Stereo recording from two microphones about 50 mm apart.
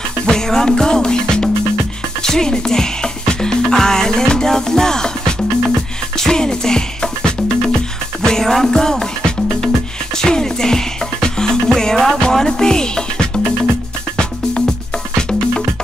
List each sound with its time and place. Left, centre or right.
0.3 s music: centre
2.2 s speech: centre
5.8 s music: centre